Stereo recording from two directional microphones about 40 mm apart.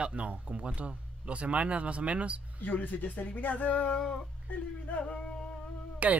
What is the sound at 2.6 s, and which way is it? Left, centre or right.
Speech, left.